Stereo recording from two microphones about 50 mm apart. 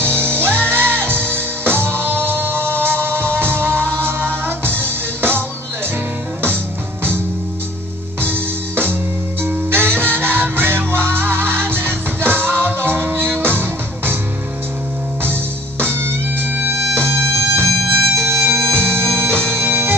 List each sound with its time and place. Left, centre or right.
0.0 s music: right
4.8 s music: right
8.2 s music: right
15.8 s music: right